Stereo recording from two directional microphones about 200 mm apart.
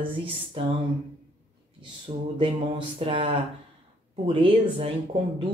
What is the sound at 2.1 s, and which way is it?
Speech, 25° right (ahead or behind).